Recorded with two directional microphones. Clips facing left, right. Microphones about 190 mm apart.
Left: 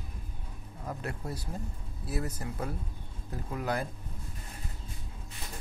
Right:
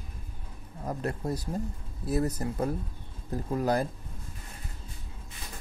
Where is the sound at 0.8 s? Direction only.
40° right (ahead or behind).